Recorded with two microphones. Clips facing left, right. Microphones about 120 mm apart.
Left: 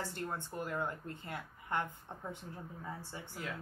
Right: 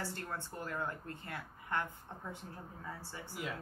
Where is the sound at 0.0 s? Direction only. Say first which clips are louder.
Left 2 dB; 20° left (ahead or behind).